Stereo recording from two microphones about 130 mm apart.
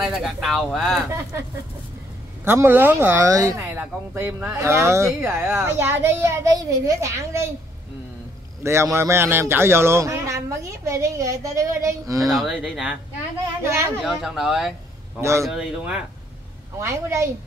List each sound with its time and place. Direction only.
0.0 s speech: centre (ahead or behind)
2.4 s speech: 20° right (ahead or behind)
3.3 s a child's voice: 25° right (ahead or behind)
8.6 s a child's voice: 20° right (ahead or behind)
12.3 s speech: 5° right (ahead or behind)
13.6 s a child's voice: 20° right (ahead or behind)
14.0 s speech: 5° right (ahead or behind)
15.1 s a child's voice: 20° right (ahead or behind)
15.4 s speech: 5° right (ahead or behind)
16.8 s a child's voice: 20° right (ahead or behind)